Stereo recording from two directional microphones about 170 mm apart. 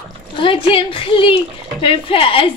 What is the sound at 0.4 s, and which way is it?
Speech, 30° left (ahead or behind).